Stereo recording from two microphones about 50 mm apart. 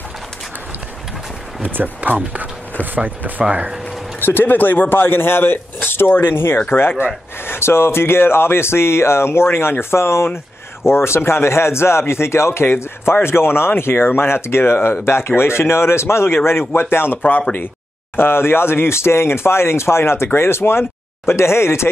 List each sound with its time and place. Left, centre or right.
1.8 s speech: right
4.2 s speech: left
7.4 s speech: left
17.3 s speech: left
18.1 s speech: left